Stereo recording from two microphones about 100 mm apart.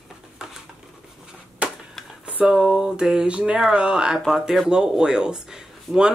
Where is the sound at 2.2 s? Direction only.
10° right (ahead or behind).